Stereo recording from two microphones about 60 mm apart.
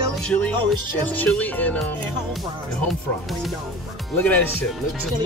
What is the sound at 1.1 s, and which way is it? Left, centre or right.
Speech, left.